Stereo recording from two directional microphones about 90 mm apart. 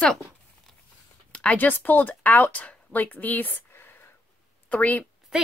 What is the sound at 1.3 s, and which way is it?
Speech, 15° left (ahead or behind).